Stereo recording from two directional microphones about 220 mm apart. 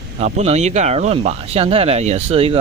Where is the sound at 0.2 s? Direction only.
30° right (ahead or behind).